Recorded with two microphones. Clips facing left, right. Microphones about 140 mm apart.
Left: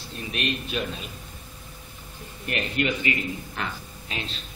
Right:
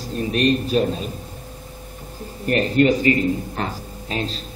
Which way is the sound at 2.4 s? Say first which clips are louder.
Right 10 dB; 40° right (ahead or behind).